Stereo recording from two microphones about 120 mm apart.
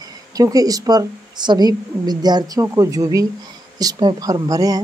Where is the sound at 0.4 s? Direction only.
30° right (ahead or behind).